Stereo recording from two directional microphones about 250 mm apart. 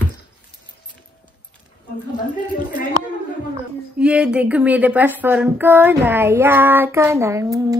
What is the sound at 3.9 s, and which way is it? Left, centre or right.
Female singing, centre.